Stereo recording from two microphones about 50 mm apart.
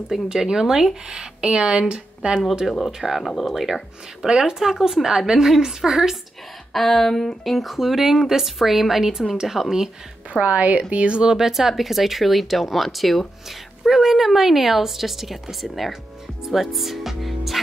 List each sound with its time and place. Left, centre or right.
0.1 s a woman's voice: centre
2.9 s speech: centre
4.3 s a woman's voice: centre
6.7 s a woman's voice: centre
10.4 s a woman's voice: right
11.3 s speech: centre